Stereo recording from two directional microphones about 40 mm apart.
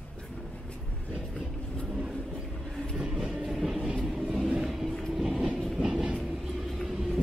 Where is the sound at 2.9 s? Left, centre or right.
Right.